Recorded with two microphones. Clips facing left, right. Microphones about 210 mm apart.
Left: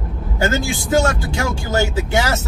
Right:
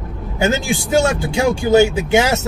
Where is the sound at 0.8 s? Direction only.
15° right (ahead or behind).